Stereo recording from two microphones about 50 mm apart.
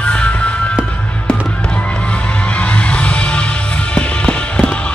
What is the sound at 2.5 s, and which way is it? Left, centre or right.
Music, left.